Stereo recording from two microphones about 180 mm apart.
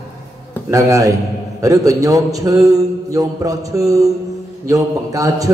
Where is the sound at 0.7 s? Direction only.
15° right (ahead or behind).